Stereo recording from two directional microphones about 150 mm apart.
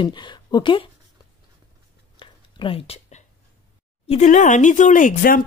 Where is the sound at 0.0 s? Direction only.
30° left (ahead or behind).